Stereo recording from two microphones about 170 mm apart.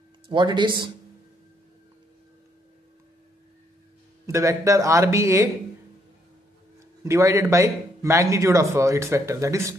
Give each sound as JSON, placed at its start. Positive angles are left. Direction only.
{"t": 0.3, "sound": "speech", "side_deg": -30}
{"t": 4.3, "sound": "speech", "side_deg": -20}
{"t": 7.0, "sound": "speech", "side_deg": -15}